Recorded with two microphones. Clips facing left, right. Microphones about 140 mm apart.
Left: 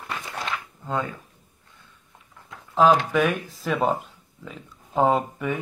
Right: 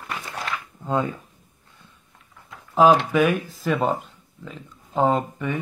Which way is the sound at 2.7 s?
10° right (ahead or behind).